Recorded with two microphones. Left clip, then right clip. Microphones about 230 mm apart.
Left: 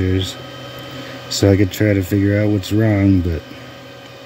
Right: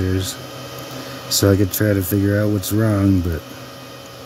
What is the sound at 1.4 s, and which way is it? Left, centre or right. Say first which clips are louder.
Speech: left 3 dB; centre.